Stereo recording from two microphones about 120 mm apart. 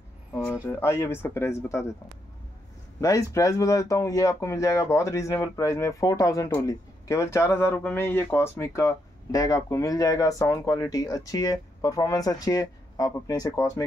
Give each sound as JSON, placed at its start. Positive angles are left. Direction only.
{"t": 0.3, "sound": "a sound", "side_deg": 20}
{"t": 0.7, "sound": "speech", "side_deg": 20}
{"t": 3.0, "sound": "speech", "side_deg": 25}